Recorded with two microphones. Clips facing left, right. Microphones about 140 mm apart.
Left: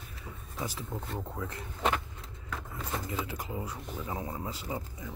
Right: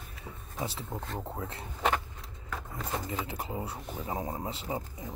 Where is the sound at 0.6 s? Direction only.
20° right (ahead or behind).